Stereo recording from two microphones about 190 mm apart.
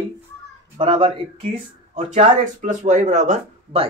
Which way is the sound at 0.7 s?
25° right (ahead or behind).